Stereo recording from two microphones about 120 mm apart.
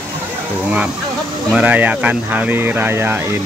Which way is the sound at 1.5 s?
15° right (ahead or behind).